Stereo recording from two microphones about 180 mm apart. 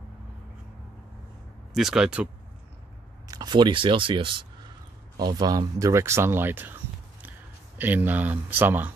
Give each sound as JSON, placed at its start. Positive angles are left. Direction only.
{"t": 1.7, "sound": "speech", "side_deg": 0}
{"t": 3.3, "sound": "speech", "side_deg": -25}